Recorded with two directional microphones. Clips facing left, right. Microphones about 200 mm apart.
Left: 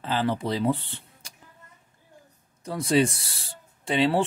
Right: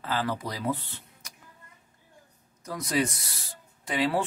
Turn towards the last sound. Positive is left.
turn(degrees=30)  # may be behind; listen again after turning